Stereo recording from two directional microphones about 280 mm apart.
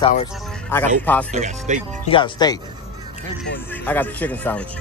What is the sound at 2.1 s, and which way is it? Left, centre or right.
Speech, centre.